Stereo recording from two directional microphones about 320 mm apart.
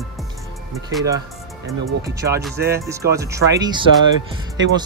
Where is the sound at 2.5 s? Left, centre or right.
Right.